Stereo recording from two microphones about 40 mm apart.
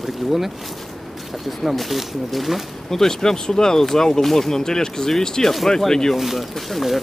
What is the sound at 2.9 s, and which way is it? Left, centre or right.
Speech, centre.